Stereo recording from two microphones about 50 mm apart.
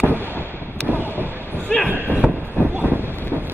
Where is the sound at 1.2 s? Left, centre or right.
Right.